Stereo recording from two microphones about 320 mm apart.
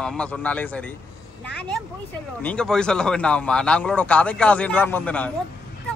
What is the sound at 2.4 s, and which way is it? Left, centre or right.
A man's voice, centre.